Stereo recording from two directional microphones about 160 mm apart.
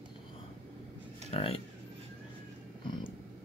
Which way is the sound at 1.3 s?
35° left (ahead or behind).